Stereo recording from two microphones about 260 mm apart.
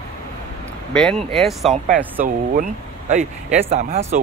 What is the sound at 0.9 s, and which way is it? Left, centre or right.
Speech, centre.